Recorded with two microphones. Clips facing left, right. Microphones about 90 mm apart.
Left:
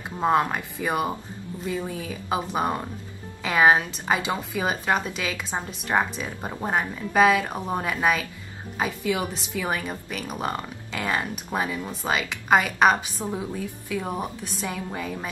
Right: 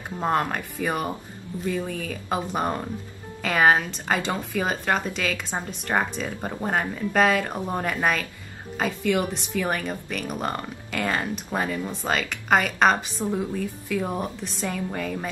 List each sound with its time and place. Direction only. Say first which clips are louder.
0.2 s speech: left 2 dB; 10° left (ahead or behind)